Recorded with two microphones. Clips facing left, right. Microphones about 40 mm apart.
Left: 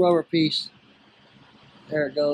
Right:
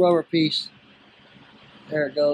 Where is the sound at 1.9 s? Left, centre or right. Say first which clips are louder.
Right 1 dB; right.